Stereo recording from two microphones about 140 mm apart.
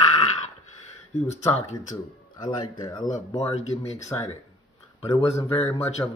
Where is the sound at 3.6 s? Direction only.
50° left (ahead or behind).